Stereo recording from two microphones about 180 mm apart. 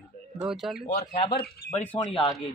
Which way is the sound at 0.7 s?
55° left (ahead or behind).